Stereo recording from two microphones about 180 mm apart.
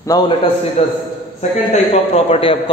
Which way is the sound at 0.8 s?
35° left (ahead or behind).